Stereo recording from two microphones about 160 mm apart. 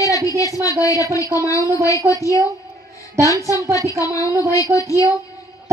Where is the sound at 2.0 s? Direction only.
20° right (ahead or behind).